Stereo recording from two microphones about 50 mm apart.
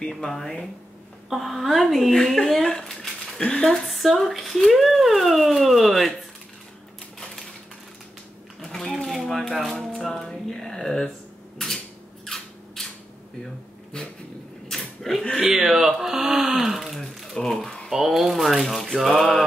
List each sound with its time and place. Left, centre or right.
0.2 s speech: centre
2.7 s a sound: centre
3.6 s speech: centre
3.9 s speech: centre
8.5 s shuffling cards: centre
11.5 s a sound: centre
12.8 s camera: centre
13.9 s speech: centre
14.7 s creak: centre
15.4 s a sound: centre
17.1 s crumpling: centre
17.8 s speech: centre